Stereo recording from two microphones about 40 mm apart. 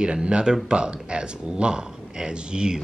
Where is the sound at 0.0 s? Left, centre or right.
Right.